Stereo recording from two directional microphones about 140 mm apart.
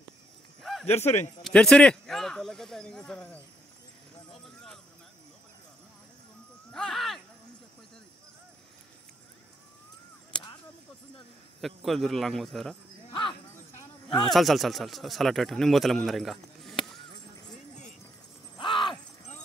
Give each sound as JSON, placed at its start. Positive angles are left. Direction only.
{"t": 0.6, "sound": "a sound", "side_deg": 0}
{"t": 0.8, "sound": "speech", "side_deg": 50}
{"t": 1.4, "sound": "speech", "side_deg": 5}
{"t": 6.7, "sound": "a sound", "side_deg": 5}
{"t": 11.6, "sound": "speech", "side_deg": 0}
{"t": 13.1, "sound": "bow-wow", "side_deg": 35}
{"t": 14.2, "sound": "speech", "side_deg": 0}
{"t": 18.6, "sound": "shatter", "side_deg": 35}